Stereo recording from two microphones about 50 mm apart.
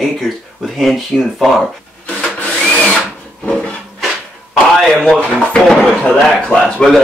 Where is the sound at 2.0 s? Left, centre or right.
Left.